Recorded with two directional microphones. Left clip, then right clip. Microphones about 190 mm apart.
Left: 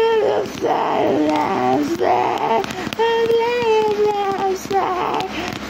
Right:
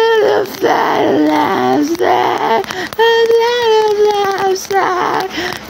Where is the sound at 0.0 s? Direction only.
20° right (ahead or behind).